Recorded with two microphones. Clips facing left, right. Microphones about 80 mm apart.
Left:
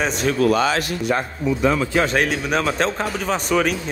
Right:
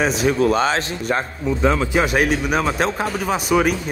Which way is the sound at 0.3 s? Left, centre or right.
Right.